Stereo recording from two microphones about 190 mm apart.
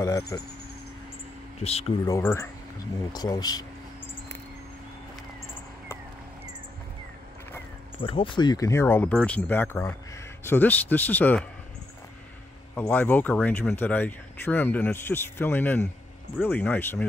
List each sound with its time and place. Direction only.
0.3 s speech: 15° left (ahead or behind)
1.6 s speech: 35° left (ahead or behind)
2.0 s speech: 15° left (ahead or behind)
8.0 s speech: 25° left (ahead or behind); by 11.4 s 10° left (ahead or behind)
12.7 s speech: 10° left (ahead or behind)